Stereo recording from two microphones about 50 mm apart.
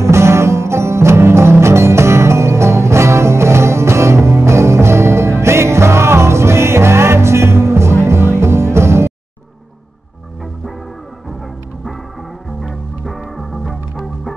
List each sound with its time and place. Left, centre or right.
0.0 s music: right
12.6 s music: centre